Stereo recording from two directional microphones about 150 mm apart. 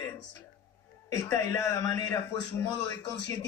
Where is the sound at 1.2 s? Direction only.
20° left (ahead or behind).